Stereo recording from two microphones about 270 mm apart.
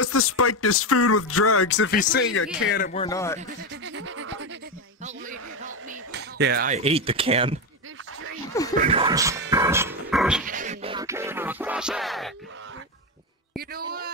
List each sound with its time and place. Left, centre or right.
0.0 s speech: left
2.8 s speech: left
3.1 s speech: centre
3.8 s a sound: right
5.0 s a sound: right
5.9 s speech: right
8.7 s a sound: right
9.0 s music: centre
9.5 s dog: centre
10.4 s music: right; by 12.3 s centre
13.6 s a man's voice: right